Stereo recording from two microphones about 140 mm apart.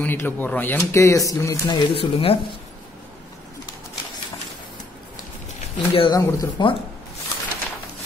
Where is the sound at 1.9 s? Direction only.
40° left (ahead or behind).